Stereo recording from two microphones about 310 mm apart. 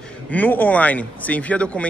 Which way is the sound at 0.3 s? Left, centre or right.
Centre.